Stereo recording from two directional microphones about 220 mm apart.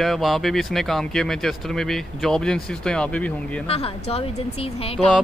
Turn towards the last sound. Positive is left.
turn(degrees=0)  # may be behind; listen again after turning